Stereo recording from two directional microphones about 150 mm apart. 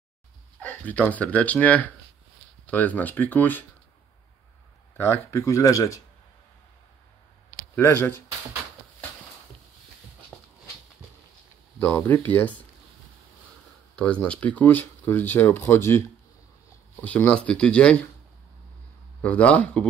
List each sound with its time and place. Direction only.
0.6 s speech: 10° left (ahead or behind)
4.9 s speech: 15° left (ahead or behind)
7.7 s speech: 15° left (ahead or behind)
10.3 s a sound: 5° left (ahead or behind)
11.8 s speech: 15° left (ahead or behind)
13.9 s speech: 5° left (ahead or behind)
19.2 s speech: 10° left (ahead or behind)